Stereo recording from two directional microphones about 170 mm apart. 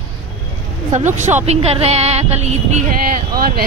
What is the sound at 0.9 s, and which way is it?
Speech, 45° right (ahead or behind).